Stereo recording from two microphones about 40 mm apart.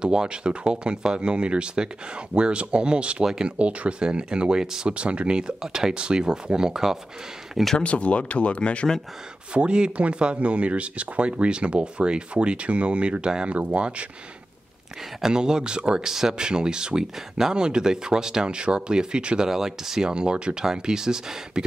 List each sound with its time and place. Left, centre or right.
0.0 s speech: right
7.7 s speech: left
9.5 s speech: right
15.2 s speech: centre
16.1 s speech: centre
20.1 s speech: right